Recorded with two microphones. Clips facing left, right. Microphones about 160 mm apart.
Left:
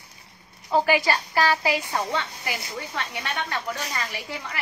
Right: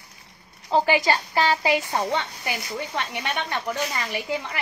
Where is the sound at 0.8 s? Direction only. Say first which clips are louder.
Right 1 dB; 25° right (ahead or behind).